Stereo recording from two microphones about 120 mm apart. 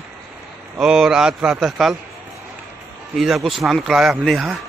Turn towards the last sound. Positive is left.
turn(degrees=0)  # may be behind; listen again after turning